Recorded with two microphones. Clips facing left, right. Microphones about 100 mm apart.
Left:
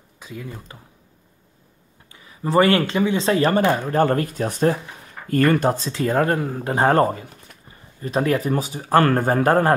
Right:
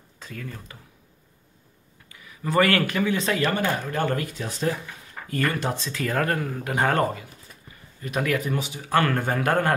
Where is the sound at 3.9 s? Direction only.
40° left (ahead or behind).